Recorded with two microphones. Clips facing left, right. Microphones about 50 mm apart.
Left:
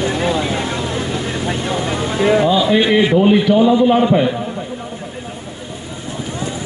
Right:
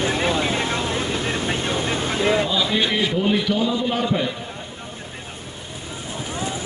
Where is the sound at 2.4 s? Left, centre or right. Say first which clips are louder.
Left 8 dB; left.